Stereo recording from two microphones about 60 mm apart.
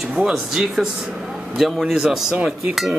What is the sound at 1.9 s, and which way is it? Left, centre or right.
Speech, centre.